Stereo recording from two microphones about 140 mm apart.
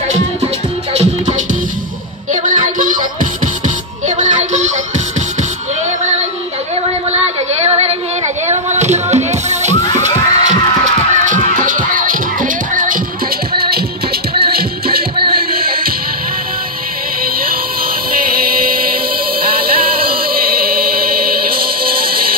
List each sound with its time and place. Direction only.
0.9 s music: 60° right (ahead or behind)
2.4 s music: 70° right (ahead or behind)
4.2 s music: 60° right (ahead or behind)
7.6 s a sound: 45° right (ahead or behind)
8.5 s music: 55° right (ahead or behind)
9.9 s crowd: 55° right (ahead or behind)
11.2 s music: 65° right (ahead or behind)
13.6 s music: 90° right
17.2 s music: 90° right
18.2 s chant: 90° right
19.5 s music: 90° right